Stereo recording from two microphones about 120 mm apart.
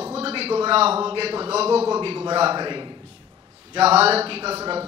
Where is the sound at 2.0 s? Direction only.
45° right (ahead or behind).